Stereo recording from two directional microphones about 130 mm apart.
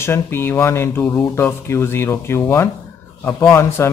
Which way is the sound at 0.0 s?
20° left (ahead or behind).